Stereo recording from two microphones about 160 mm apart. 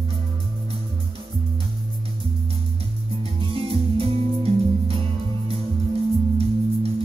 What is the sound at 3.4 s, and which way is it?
Music, 35° right (ahead or behind).